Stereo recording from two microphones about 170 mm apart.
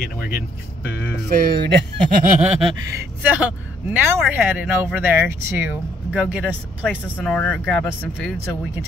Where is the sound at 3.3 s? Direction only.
10° right (ahead or behind).